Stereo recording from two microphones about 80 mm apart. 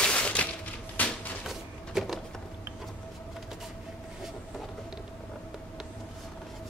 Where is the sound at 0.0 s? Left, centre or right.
Centre.